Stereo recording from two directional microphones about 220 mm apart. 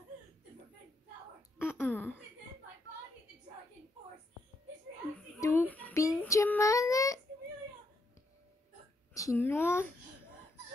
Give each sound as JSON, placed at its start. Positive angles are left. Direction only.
{"t": 1.6, "sound": "babbling", "side_deg": 10}
{"t": 5.1, "sound": "child singing", "side_deg": 10}
{"t": 9.1, "sound": "speech", "side_deg": 15}